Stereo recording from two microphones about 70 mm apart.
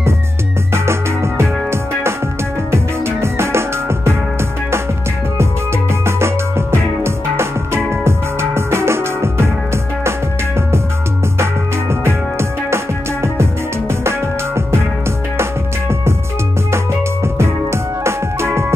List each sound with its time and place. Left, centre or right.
1.4 s music: right
6.0 s music: right
11.9 s music: right
17.4 s music: right